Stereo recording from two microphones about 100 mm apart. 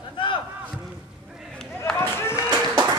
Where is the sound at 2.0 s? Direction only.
25° left (ahead or behind).